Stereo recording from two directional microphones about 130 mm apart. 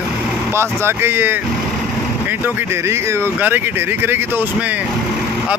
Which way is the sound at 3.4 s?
15° right (ahead or behind).